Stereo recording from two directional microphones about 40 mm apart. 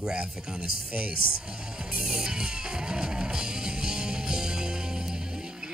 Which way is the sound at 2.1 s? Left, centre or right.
Centre.